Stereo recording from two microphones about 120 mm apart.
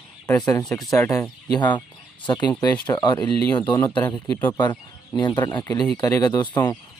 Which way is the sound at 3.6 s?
20° left (ahead or behind).